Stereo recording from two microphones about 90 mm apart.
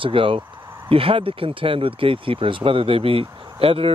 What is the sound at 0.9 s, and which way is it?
Speech, 90° right.